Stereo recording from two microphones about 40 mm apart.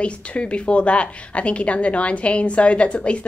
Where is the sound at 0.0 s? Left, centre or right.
Left.